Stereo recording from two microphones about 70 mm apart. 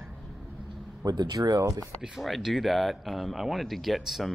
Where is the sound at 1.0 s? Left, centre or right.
Right.